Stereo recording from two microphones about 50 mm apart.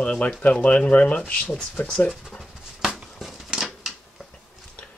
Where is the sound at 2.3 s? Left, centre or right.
Centre.